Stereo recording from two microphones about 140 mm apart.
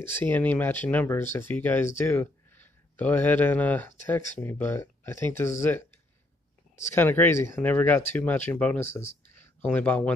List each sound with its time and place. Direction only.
0.0 s speech: 15° left (ahead or behind)
6.9 s speech: 15° left (ahead or behind)